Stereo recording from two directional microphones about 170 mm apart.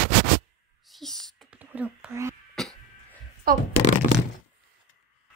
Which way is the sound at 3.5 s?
60° right (ahead or behind).